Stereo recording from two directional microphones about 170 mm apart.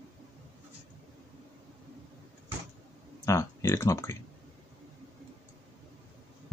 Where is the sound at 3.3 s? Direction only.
15° left (ahead or behind).